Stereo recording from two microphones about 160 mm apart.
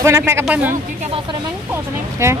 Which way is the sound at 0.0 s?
15° right (ahead or behind).